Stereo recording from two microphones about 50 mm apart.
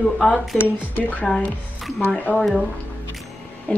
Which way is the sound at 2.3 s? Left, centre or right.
Right.